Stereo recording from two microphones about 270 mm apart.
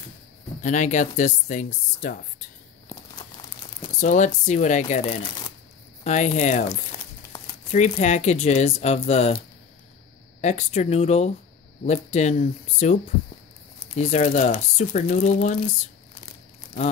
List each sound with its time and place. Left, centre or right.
0.6 s speech: left
4.0 s speech: left
7.7 s speech: left
10.4 s speech: left
13.9 s speech: left